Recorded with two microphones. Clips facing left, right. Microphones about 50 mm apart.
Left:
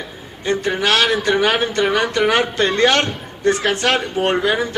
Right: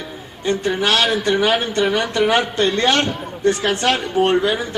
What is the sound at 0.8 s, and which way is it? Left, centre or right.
A man's voice, left.